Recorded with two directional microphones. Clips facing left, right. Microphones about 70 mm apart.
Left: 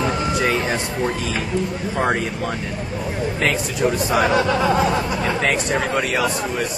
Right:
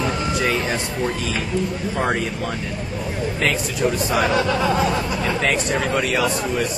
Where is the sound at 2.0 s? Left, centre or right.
Left.